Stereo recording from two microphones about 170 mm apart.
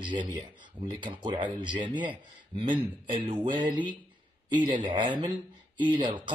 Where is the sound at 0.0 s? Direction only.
30° right (ahead or behind).